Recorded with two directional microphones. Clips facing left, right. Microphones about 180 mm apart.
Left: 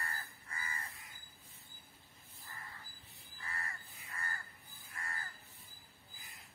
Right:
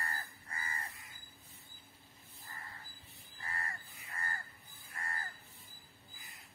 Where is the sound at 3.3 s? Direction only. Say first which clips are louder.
Right 2 dB; 35° right (ahead or behind).